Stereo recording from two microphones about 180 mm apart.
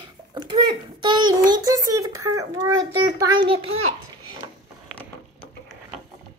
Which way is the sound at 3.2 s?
25° right (ahead or behind).